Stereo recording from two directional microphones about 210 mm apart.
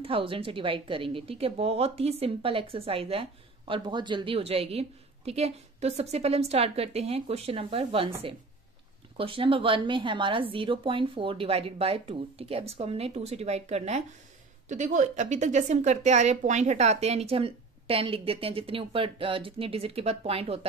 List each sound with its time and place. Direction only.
0.0 s a woman's voice: 25° right (ahead or behind)
9.1 s a woman's voice: 25° right (ahead or behind)